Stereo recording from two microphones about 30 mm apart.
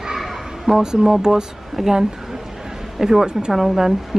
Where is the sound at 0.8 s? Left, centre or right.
Right.